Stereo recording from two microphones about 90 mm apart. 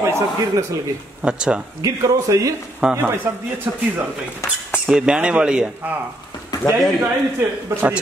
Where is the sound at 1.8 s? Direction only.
35° right (ahead or behind).